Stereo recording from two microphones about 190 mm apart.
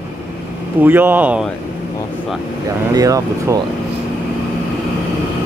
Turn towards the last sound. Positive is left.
turn(degrees=-20)  # may be behind; listen again after turning